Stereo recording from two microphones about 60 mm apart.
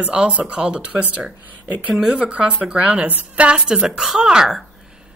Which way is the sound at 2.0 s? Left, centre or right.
Centre.